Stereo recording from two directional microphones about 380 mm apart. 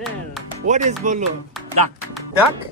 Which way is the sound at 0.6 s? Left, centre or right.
Centre.